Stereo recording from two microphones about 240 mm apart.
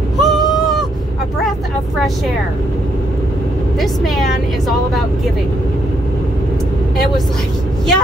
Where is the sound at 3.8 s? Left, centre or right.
Centre.